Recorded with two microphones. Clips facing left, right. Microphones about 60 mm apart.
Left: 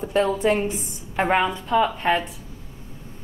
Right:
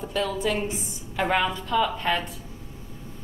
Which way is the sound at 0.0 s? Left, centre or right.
Left.